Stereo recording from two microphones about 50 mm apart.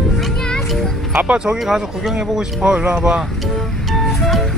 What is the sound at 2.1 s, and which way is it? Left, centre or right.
Speech, centre.